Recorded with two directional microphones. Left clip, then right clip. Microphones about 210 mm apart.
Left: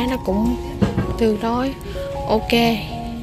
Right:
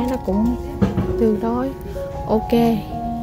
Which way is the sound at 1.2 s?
15° right (ahead or behind).